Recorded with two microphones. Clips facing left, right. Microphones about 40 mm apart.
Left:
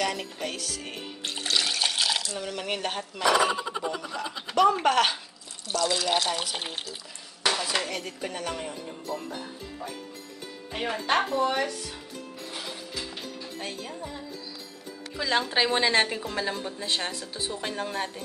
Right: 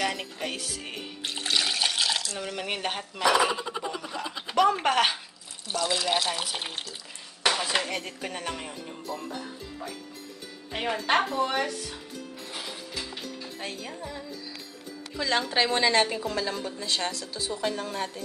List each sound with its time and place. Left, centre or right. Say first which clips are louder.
0.0 s music: even; centre
2.3 s speech: left 1 dB; centre
3.3 s speech: even; centre
7.4 s dishes: right 1 dB; right
7.9 s speech: even; centre
8.8 s speech: left 1 dB; centre
10.7 s speech: right 1 dB; centre
12.5 s music: even; centre
15.1 s a woman's voice: even; centre